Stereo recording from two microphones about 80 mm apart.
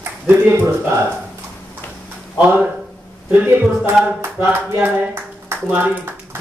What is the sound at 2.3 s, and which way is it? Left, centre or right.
Speech, centre.